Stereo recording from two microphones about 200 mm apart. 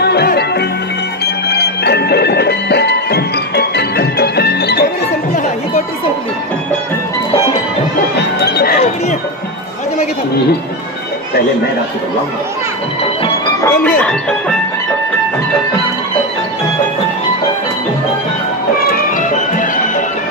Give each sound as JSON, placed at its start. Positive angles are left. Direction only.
{"t": 0.0, "sound": "music", "side_deg": 55}
{"t": 8.4, "sound": "music", "side_deg": 50}
{"t": 8.7, "sound": "chink", "side_deg": 35}
{"t": 13.6, "sound": "music", "side_deg": 10}
{"t": 18.9, "sound": "music", "side_deg": 45}